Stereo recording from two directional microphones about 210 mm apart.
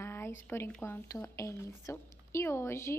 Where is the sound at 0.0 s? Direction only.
10° left (ahead or behind).